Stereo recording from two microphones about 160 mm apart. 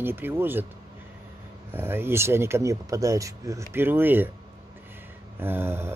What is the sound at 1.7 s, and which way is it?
Speech, 15° right (ahead or behind).